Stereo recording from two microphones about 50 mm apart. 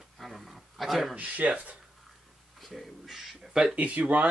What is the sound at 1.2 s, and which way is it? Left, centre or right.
Speech, right.